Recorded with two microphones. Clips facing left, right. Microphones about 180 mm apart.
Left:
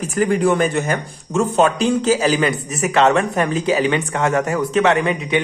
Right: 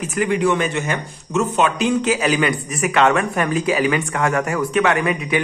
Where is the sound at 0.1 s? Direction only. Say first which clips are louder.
Left 2 dB; 40° left (ahead or behind).